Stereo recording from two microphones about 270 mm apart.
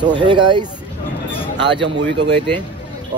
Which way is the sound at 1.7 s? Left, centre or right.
Centre.